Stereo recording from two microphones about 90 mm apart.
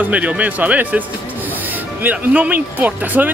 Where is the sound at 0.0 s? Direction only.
15° right (ahead or behind).